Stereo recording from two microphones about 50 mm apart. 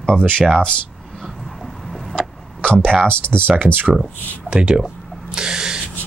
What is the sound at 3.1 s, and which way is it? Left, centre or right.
Speech, left.